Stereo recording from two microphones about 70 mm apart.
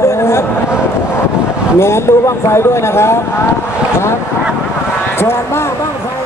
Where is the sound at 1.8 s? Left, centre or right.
Left.